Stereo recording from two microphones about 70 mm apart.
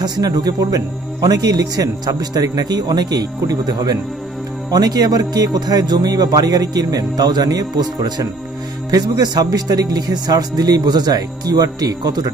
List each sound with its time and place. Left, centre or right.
0.0 s speech: right